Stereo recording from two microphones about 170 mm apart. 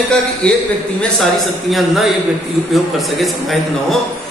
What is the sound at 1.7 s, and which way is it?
A man's voice, centre (ahead or behind).